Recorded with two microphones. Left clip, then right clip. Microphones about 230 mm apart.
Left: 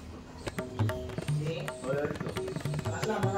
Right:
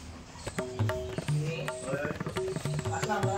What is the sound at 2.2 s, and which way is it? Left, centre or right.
Tabla, centre.